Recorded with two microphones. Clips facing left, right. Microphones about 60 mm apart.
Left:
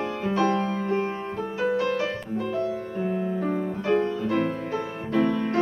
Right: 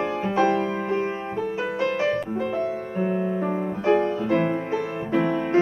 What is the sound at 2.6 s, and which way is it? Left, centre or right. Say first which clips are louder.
Music: right 2 dB; right.